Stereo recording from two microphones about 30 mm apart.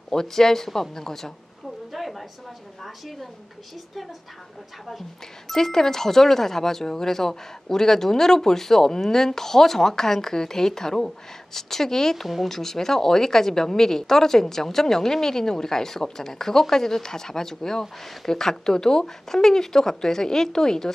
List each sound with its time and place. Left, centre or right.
0.1 s speech: centre
1.9 s a sound: centre
2.8 s a woman's voice: centre
5.5 s speech: centre